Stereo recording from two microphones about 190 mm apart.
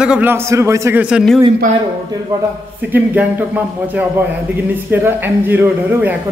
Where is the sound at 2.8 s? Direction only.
10° right (ahead or behind).